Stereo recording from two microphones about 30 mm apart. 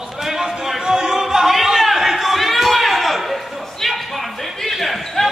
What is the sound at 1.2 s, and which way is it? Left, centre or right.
Chatter, centre.